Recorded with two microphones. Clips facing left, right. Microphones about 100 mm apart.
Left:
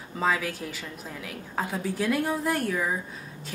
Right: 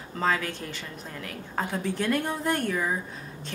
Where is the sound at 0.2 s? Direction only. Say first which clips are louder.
Even; 5° left (ahead or behind).